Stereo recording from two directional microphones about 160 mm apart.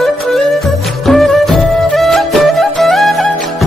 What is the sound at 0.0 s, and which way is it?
Music, centre (ahead or behind).